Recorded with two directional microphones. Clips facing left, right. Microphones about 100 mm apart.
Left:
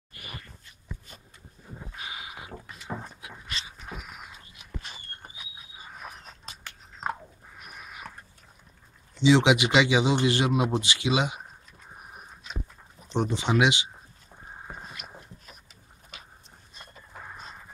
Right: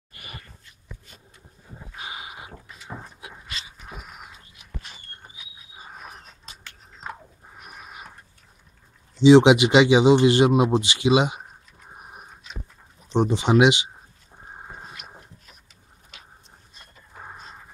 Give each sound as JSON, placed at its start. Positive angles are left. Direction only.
{"t": 2.0, "sound": "a sound", "side_deg": -30}
{"t": 9.2, "sound": "a man's voice", "side_deg": -25}
{"t": 13.1, "sound": "a man's voice", "side_deg": -20}